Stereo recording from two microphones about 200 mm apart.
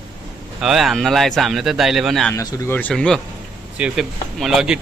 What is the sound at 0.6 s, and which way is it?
Speech, centre (ahead or behind).